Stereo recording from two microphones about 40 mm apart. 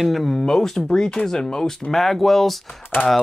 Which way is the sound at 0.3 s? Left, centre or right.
Centre.